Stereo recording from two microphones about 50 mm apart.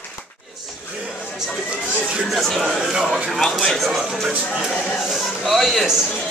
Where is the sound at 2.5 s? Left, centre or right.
Centre.